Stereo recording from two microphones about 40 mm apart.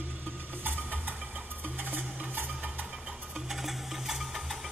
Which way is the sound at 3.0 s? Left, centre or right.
Right.